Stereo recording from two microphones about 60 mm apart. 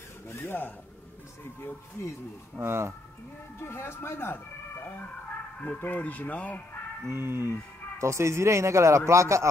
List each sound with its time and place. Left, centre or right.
0.3 s speech: left
2.6 s a man's voice: right
3.5 s speech: left
5.6 s speech: left
7.1 s a man's voice: right